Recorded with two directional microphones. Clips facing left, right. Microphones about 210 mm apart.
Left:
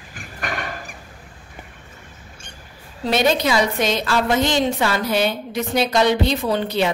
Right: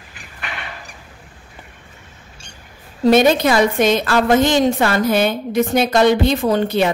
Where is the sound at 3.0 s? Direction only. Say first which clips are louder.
Right 6 dB; 50° right (ahead or behind).